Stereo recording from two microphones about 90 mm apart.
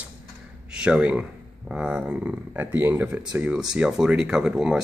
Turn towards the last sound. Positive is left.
turn(degrees=-5)  # may be behind; listen again after turning